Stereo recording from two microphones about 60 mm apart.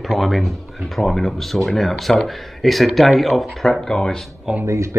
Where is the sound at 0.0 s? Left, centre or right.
Centre.